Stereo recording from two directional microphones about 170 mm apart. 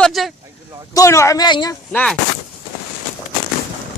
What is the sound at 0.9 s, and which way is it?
Speech, 15° left (ahead or behind).